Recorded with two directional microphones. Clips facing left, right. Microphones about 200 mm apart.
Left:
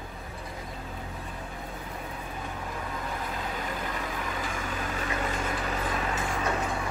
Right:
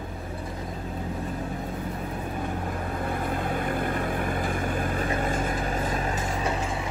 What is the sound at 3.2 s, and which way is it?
Vehicle, 55° right (ahead or behind).